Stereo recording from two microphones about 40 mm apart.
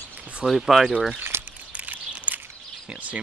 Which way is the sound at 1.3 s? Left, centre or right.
Right.